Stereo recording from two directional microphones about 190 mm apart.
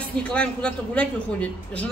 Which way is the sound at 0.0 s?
5° left (ahead or behind).